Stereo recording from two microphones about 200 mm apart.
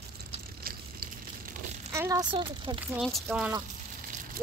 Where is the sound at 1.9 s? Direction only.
15° right (ahead or behind).